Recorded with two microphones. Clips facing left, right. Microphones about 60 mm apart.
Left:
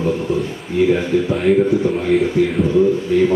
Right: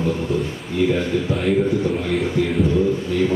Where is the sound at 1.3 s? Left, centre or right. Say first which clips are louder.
Left 4 dB; centre.